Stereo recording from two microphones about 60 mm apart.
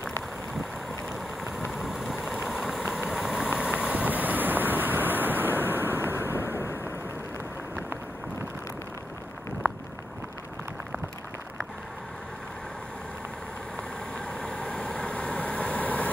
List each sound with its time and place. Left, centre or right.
1.8 s vehicle: centre; by 6.3 s right
6.3 s a sound: left
13.7 s vehicle: centre